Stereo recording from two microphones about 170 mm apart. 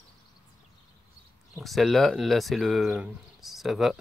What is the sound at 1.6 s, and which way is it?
Speech, centre (ahead or behind).